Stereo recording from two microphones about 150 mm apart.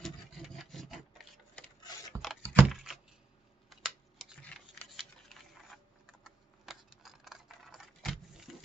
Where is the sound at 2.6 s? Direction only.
Centre (ahead or behind).